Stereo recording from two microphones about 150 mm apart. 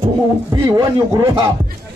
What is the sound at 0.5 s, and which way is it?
Speech, 25° right (ahead or behind).